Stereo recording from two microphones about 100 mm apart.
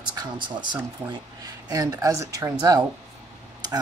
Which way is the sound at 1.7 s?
35° right (ahead or behind).